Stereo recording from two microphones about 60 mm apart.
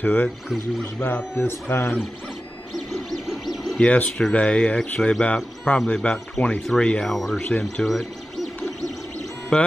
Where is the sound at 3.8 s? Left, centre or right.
Left.